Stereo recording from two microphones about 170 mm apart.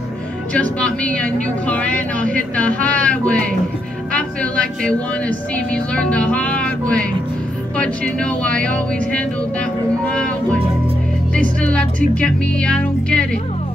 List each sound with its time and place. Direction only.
0.5 s speech: 5° left (ahead or behind)